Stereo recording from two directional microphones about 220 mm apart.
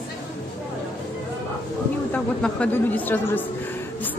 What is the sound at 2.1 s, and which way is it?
A woman's voice, 5° left (ahead or behind).